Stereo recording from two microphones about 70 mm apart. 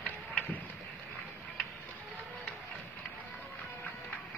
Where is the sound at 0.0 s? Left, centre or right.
Centre.